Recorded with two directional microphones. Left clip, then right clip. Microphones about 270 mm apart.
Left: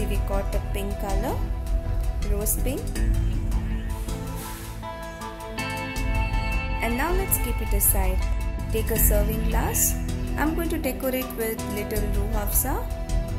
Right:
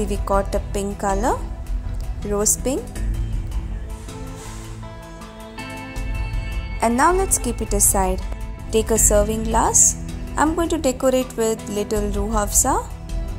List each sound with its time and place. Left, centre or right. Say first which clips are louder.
0.1 s a woman's voice: right 9 dB; right
2.3 s a woman's voice: right 9 dB; right
5.6 s music: left 3 dB; centre
6.8 s a woman's voice: right 11 dB; right
9.1 s a woman's voice: right 9 dB; centre